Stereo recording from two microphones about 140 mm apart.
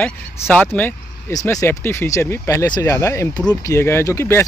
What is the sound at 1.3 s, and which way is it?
Speech, 25° left (ahead or behind).